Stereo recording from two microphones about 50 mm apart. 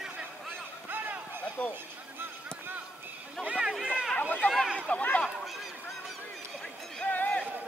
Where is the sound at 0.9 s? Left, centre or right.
Right.